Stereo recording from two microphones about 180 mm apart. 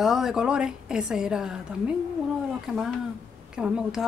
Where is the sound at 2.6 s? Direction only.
Centre (ahead or behind).